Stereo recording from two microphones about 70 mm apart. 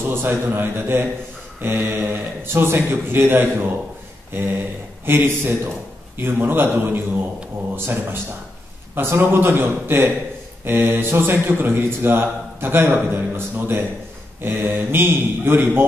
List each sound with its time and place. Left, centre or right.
0.0 s speech: right
4.3 s a sound: right
5.0 s speech: right